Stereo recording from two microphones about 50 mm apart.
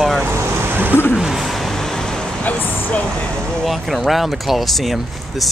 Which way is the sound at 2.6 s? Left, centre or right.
Left.